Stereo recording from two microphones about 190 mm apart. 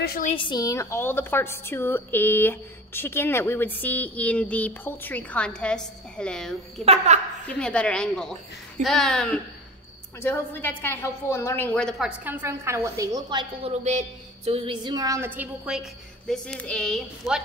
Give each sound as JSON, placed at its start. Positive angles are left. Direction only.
{"t": 0.0, "sound": "a woman's voice", "side_deg": 50}
{"t": 0.3, "sound": "a woman's voice", "side_deg": 25}
{"t": 6.8, "sound": "a woman's voice", "side_deg": -35}
{"t": 7.4, "sound": "a woman's voice", "side_deg": 5}
{"t": 12.3, "sound": "a woman's voice", "side_deg": -10}